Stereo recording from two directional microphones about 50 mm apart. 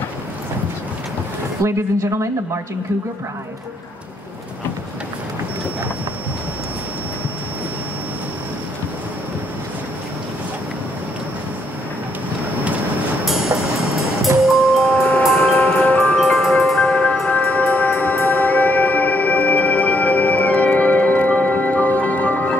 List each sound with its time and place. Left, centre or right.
1.6 s speech: right
13.2 s music: centre
15.0 s music: left
16.3 s music: centre
16.9 s music: left